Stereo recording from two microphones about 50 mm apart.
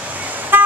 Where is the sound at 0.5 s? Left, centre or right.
Right.